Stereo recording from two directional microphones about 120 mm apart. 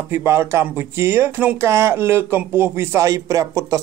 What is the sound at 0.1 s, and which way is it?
Speech, 20° right (ahead or behind).